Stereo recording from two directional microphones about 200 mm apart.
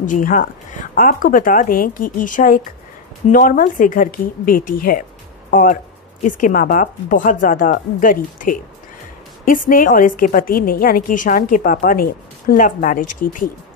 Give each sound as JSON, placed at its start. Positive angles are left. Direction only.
{"t": 0.0, "sound": "a woman's voice", "side_deg": 40}